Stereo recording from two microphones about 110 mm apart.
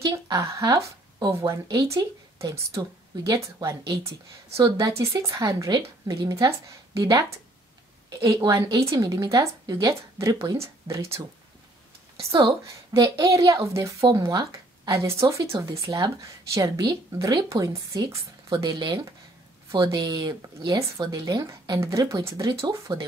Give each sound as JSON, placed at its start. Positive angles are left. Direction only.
{"t": 0.0, "sound": "a woman's voice", "side_deg": -30}
{"t": 12.4, "sound": "a woman's voice", "side_deg": -30}